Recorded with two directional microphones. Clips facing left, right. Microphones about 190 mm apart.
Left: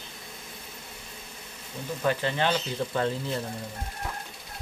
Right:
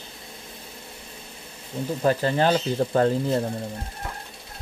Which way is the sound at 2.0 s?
40° right (ahead or behind).